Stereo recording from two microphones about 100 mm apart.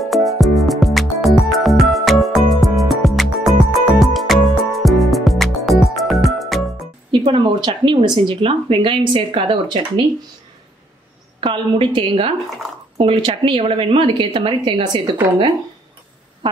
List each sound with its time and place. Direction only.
0.0 s music: centre (ahead or behind)
7.1 s speech: 55° right (ahead or behind)
11.4 s speech: 60° right (ahead or behind)
14.6 s a woman's voice: 50° right (ahead or behind)